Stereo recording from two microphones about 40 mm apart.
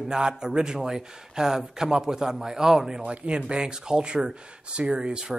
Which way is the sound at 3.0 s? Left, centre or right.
Right.